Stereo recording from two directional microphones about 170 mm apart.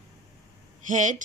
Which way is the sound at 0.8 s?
50° right (ahead or behind).